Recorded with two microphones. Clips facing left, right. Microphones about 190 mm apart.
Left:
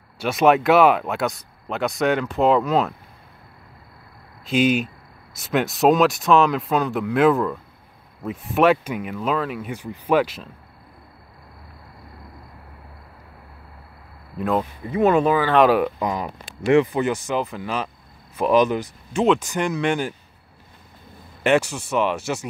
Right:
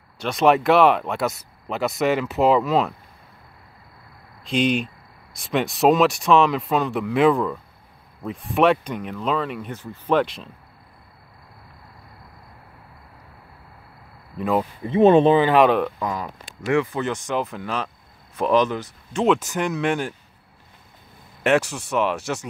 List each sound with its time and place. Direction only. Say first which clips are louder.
0.2 s speech: left 1 dB; 5° left (ahead or behind)
4.5 s speech: left 2 dB; 5° left (ahead or behind)
14.3 s speech: even; centre (ahead or behind)
14.6 s speech: right 7 dB; 25° right (ahead or behind)
15.5 s speech: even; 5° left (ahead or behind)
16.0 s speech: left 2 dB; 20° left (ahead or behind)
17.1 s speech: left 1 dB; 5° left (ahead or behind)
19.2 s speech: even; centre (ahead or behind)
21.4 s speech: left 1 dB; centre (ahead or behind)